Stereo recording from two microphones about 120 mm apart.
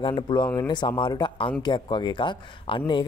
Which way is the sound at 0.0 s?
40° left (ahead or behind).